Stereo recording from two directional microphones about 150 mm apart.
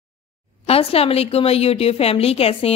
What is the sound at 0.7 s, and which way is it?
A woman's voice, 40° left (ahead or behind).